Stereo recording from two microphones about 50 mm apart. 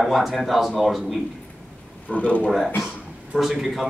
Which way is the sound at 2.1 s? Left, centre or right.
Left.